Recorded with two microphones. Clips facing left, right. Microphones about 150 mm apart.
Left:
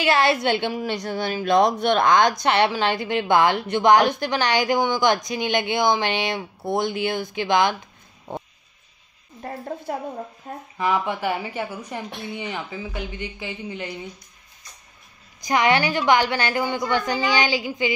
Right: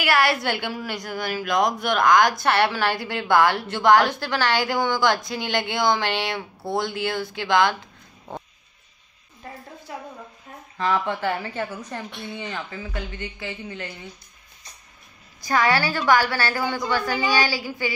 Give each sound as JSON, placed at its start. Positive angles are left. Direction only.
{"t": 0.0, "sound": "a woman's voice", "side_deg": 20}
{"t": 8.3, "sound": "a sound", "side_deg": 15}
{"t": 9.4, "sound": "a sound", "side_deg": 55}
{"t": 10.5, "sound": "speech", "side_deg": 50}
{"t": 10.8, "sound": "a woman's voice", "side_deg": 15}
{"t": 15.4, "sound": "a woman's voice", "side_deg": 20}